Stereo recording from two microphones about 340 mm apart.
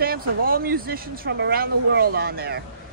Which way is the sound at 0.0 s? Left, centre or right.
Right.